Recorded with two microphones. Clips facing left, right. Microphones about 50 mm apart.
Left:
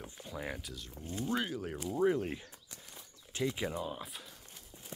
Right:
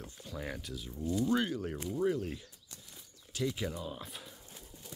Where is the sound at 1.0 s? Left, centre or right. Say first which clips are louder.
Right 7 dB; left.